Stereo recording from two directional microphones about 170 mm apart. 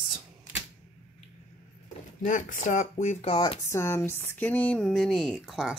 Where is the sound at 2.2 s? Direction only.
50° left (ahead or behind); by 3.6 s 35° left (ahead or behind).